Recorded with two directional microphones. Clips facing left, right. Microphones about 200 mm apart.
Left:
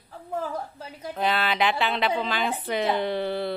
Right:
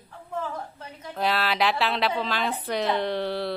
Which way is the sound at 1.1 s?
Centre (ahead or behind).